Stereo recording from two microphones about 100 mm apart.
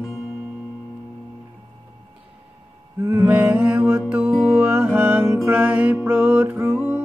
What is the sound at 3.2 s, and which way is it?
Mantra, 15° right (ahead or behind).